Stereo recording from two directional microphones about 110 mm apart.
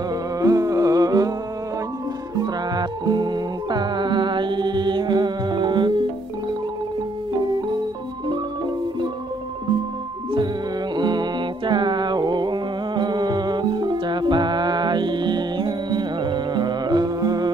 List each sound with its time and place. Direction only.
0.4 s music: 30° right (ahead or behind)
2.4 s music: 40° right (ahead or behind)
11.0 s music: 40° right (ahead or behind)